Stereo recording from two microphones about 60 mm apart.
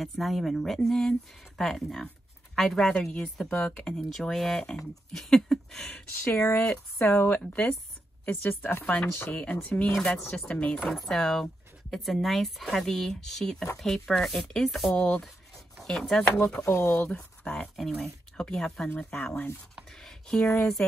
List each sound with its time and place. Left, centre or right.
0.0 s speech: centre
3.4 s speech: left
4.1 s speech: centre
6.1 s speech: left
7.2 s speech: left
8.8 s speech: left
10.8 s speech: centre
15.0 s speech: left
15.8 s speech: centre
16.6 s speech: left
17.1 s speech: centre
18.9 s speech: left
19.9 s a sound: centre
20.4 s speech: left